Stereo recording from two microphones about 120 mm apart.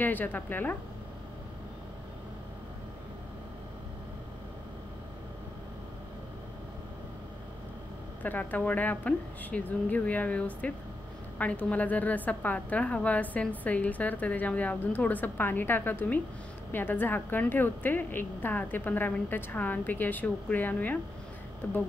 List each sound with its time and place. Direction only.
0.0 s a woman's voice: 15° left (ahead or behind)
8.2 s a woman's voice: 15° left (ahead or behind)